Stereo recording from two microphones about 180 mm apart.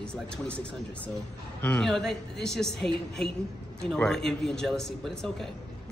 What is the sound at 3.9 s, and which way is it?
A man's voice, 5° left (ahead or behind).